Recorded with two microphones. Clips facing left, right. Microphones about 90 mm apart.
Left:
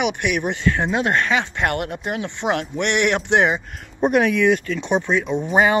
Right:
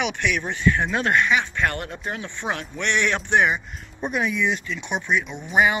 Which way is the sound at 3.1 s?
25° left (ahead or behind).